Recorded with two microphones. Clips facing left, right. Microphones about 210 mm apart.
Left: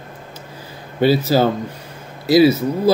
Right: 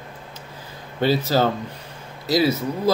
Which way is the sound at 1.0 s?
10° left (ahead or behind).